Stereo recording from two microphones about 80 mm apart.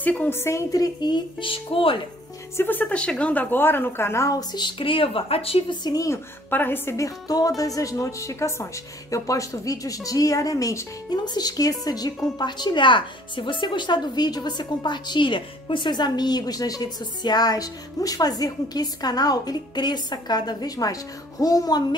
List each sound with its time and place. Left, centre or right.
0.0 s a woman's voice: centre
0.3 s speech: left
2.5 s a woman's voice: left
4.4 s speech: left
5.9 s speech: left
6.5 s a woman's voice: left
7.0 s speech: left
11.1 s speech: left
12.4 s speech: left